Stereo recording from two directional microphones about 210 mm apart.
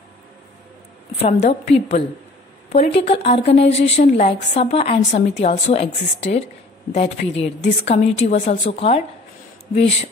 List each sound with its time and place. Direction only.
1.2 s a woman's voice: 30° left (ahead or behind)